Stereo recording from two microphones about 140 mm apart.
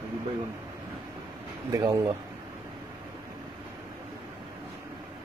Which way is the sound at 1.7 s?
25° right (ahead or behind).